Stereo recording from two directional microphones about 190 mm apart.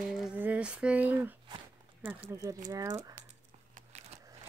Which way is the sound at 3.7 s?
35° right (ahead or behind).